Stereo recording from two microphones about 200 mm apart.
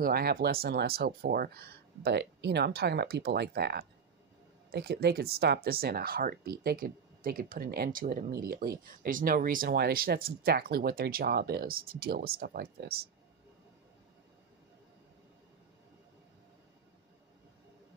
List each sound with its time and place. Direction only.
0.0 s speech: 50° right (ahead or behind)